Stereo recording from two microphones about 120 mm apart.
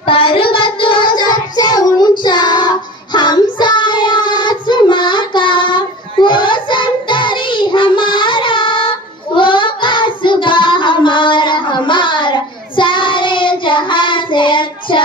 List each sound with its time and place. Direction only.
0.0 s child singing: 45° left (ahead or behind)